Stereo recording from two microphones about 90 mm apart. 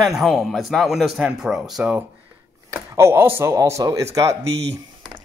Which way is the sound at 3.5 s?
35° right (ahead or behind).